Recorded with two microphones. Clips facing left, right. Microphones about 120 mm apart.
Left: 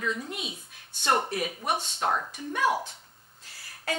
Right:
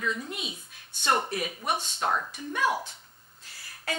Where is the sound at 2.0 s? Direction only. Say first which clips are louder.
Left 1 dB; 30° left (ahead or behind).